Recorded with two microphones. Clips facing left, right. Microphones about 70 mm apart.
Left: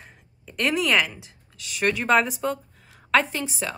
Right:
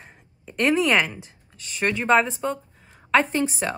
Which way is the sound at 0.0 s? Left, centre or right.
Centre.